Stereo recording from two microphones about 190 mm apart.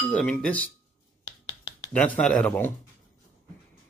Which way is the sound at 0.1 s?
5° left (ahead or behind).